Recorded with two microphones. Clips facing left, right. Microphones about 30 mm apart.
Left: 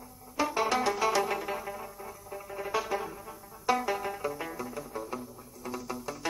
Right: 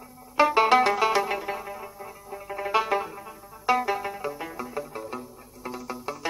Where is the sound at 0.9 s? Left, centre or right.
Right.